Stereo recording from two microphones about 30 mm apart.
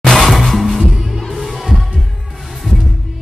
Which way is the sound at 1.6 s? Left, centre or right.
Centre.